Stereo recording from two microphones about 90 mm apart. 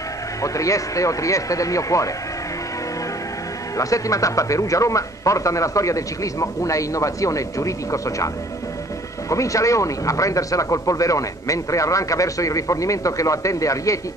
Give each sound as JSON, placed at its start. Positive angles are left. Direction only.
{"t": 0.4, "sound": "speech", "side_deg": 35}
{"t": 3.7, "sound": "speech", "side_deg": 40}
{"t": 9.3, "sound": "speech", "side_deg": 35}